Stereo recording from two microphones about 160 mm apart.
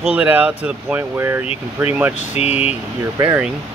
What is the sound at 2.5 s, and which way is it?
Speech, 10° right (ahead or behind).